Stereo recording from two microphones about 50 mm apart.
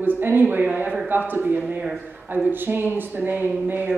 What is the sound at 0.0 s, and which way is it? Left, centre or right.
Speech, right.